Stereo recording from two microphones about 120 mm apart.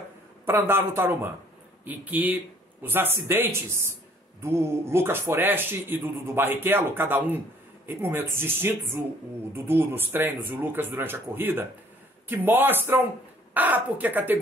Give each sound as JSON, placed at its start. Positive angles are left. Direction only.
{"t": 0.5, "sound": "speech", "side_deg": -20}